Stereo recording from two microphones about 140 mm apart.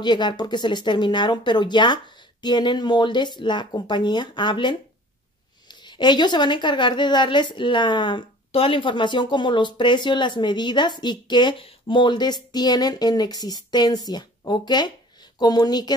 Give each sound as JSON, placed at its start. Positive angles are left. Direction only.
{"t": 0.0, "sound": "a woman's voice", "side_deg": 30}